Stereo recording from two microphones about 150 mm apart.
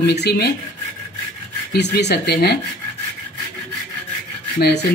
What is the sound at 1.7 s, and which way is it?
Speech, 90° left.